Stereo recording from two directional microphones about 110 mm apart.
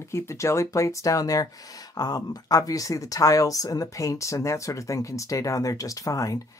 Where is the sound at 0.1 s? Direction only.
25° left (ahead or behind).